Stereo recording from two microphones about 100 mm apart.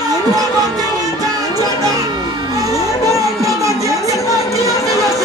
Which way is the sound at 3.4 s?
35° right (ahead or behind).